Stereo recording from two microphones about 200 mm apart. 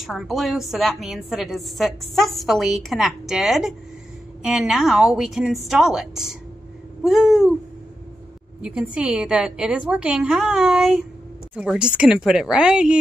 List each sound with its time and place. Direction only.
0.0 s a woman's voice: centre (ahead or behind)
8.5 s a woman's voice: 5° right (ahead or behind)